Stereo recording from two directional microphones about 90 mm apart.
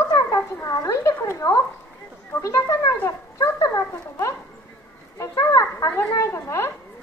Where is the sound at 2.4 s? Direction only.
30° left (ahead or behind).